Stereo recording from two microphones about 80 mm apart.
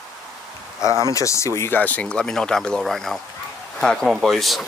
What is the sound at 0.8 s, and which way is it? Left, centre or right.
Speech, right.